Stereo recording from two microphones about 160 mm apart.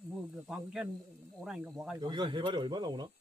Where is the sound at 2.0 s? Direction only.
30° right (ahead or behind).